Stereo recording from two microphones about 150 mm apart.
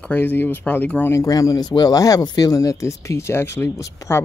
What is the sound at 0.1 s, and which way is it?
Speech, 10° left (ahead or behind).